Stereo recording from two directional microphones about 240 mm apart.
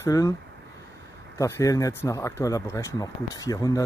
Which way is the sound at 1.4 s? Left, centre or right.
Centre.